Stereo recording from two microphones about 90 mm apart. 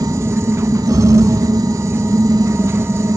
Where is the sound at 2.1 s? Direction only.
35° right (ahead or behind).